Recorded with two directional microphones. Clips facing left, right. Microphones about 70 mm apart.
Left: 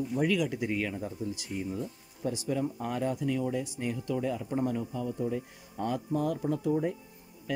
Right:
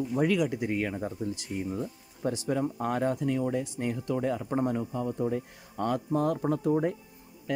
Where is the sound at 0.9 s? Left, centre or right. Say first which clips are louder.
Right 2 dB; right.